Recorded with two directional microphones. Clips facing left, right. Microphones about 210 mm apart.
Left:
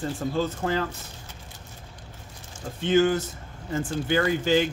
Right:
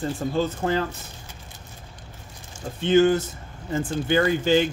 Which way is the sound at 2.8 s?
25° right (ahead or behind).